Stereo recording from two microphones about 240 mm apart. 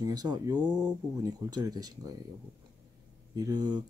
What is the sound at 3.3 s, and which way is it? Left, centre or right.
Speech, centre.